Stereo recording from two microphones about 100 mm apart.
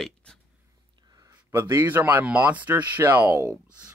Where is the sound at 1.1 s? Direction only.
35° right (ahead or behind).